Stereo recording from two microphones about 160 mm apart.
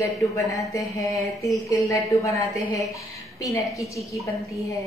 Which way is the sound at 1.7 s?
20° left (ahead or behind).